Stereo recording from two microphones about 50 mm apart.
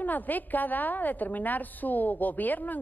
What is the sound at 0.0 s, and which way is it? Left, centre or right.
Speech, left.